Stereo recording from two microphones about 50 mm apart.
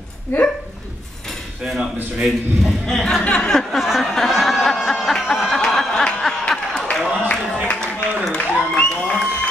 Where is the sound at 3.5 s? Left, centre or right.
Centre.